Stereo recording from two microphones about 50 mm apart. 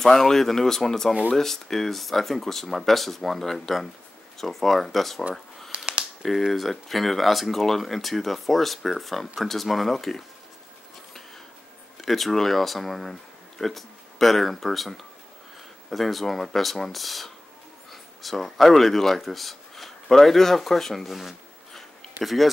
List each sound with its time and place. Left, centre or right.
0.0 s speech: centre
5.7 s a sound: right
6.2 s speech: centre
12.0 s speech: centre